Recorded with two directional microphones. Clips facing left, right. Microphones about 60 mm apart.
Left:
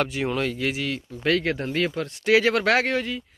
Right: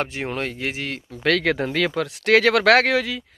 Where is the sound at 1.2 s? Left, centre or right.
Right.